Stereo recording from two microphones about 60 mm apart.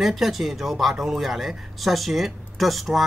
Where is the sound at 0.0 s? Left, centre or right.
Centre.